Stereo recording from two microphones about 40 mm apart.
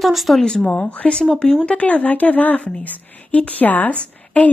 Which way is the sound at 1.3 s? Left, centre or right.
Centre.